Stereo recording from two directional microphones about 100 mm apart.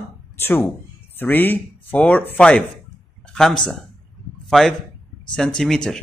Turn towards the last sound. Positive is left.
turn(degrees=5)  # may be behind; listen again after turning